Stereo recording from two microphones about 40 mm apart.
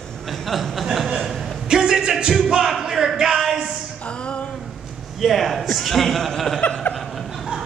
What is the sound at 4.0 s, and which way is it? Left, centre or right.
Music, left.